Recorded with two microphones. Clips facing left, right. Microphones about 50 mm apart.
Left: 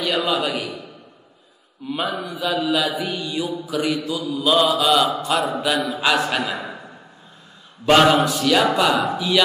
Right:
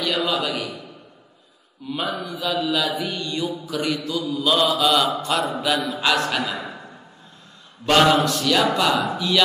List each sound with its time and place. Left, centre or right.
0.0 s a man's voice: centre
1.9 s a man's voice: centre
2.3 s mantra: centre
6.5 s speech: left
7.8 s a man's voice: centre
8.9 s speech: left